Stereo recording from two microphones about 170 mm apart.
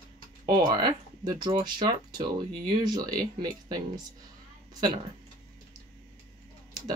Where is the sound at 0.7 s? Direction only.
25° right (ahead or behind).